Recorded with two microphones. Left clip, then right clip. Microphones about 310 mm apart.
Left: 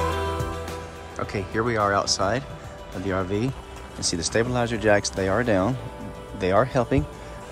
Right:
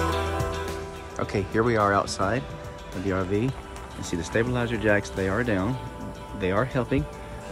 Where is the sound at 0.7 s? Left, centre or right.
Centre.